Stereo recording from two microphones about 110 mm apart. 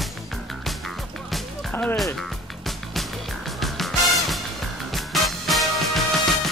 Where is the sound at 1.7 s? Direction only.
15° left (ahead or behind).